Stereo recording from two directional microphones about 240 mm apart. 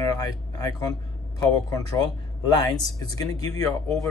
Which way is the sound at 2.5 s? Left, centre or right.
Centre.